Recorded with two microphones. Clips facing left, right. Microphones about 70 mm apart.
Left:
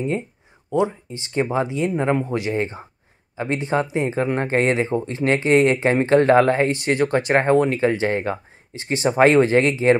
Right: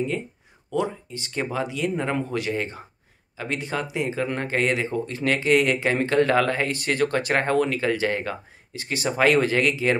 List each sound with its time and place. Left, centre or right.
0.7 s speech: left